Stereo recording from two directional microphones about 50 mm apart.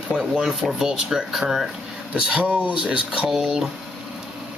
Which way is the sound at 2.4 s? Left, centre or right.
Right.